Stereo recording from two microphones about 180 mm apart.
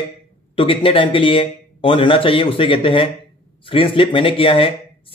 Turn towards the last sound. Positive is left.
turn(degrees=30)  # may be behind; listen again after turning